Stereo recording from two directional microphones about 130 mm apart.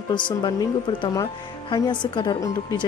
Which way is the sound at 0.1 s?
35° left (ahead or behind).